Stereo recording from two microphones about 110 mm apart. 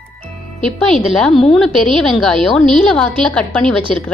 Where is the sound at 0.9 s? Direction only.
5° left (ahead or behind).